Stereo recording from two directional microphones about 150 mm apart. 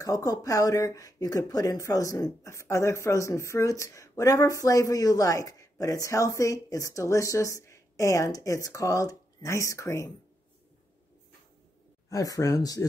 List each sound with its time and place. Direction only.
0.0 s speech: 25° left (ahead or behind)
12.1 s speech: 20° left (ahead or behind)